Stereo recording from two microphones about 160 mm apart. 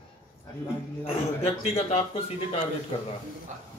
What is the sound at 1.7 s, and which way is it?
Speech, 40° left (ahead or behind).